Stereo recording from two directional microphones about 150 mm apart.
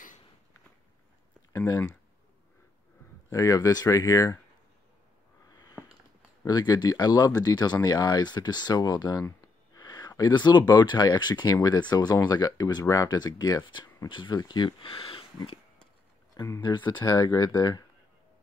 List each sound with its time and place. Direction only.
3.3 s speech: 20° left (ahead or behind)
5.5 s a sound: 25° left (ahead or behind)
6.4 s speech: 25° left (ahead or behind)
16.3 s speech: 20° left (ahead or behind)